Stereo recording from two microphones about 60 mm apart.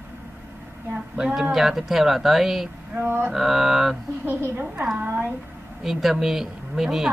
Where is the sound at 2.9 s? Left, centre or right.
Right.